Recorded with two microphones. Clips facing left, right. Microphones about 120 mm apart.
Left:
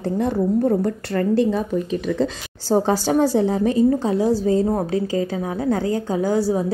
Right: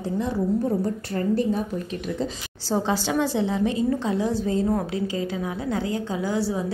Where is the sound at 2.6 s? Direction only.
45° left (ahead or behind).